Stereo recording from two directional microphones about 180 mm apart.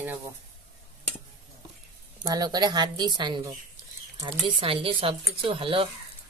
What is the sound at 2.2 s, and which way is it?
Speech, 20° right (ahead or behind).